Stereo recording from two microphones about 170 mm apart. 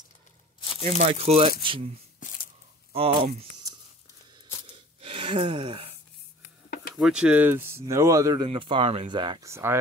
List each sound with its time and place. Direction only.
0.8 s speech: 40° right (ahead or behind)
2.9 s speech: 35° right (ahead or behind)
4.6 s a sound: 35° right (ahead or behind)
7.0 s speech: 5° right (ahead or behind); by 9.5 s 25° right (ahead or behind)
9.5 s speech: 15° right (ahead or behind)